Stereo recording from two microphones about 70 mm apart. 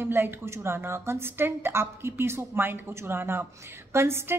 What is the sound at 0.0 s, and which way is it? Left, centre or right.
A woman's voice, right.